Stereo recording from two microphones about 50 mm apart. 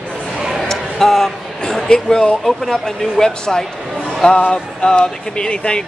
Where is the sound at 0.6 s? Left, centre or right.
Centre.